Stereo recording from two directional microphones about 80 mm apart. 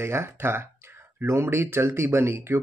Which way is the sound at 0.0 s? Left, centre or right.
Right.